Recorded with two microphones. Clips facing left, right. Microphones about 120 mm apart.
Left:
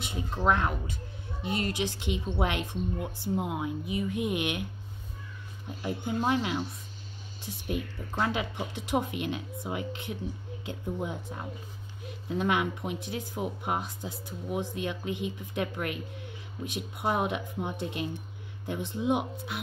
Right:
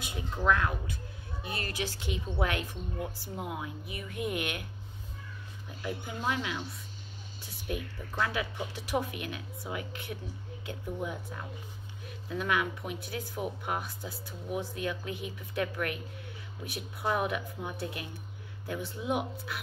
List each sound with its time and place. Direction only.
0.0 s speech: 25° left (ahead or behind)
5.8 s speech: 25° left (ahead or behind)